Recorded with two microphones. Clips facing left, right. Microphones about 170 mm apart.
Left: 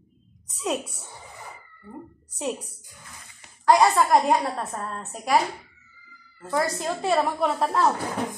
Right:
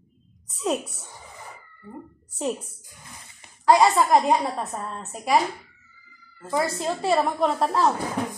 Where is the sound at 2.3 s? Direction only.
Centre (ahead or behind).